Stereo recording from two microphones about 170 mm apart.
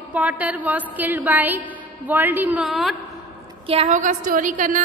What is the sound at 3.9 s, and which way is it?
Speech, 50° right (ahead or behind).